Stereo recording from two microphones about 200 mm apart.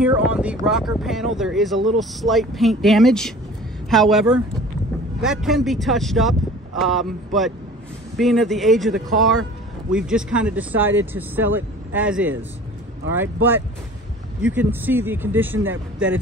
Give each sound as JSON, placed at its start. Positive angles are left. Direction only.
{"t": 0.0, "sound": "speech", "side_deg": -5}
{"t": 15.7, "sound": "speech", "side_deg": -75}